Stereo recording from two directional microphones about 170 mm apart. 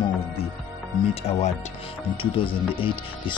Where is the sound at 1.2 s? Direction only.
40° left (ahead or behind).